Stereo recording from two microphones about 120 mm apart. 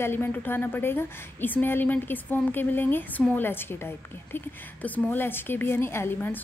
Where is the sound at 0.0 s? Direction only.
20° left (ahead or behind).